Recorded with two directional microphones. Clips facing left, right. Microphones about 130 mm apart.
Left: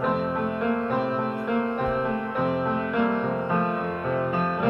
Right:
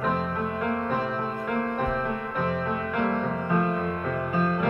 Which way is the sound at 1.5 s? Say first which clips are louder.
Left 2 dB; 45° right (ahead or behind).